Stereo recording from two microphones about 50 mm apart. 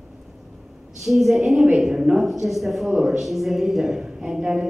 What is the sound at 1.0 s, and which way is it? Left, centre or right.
A woman's voice, centre.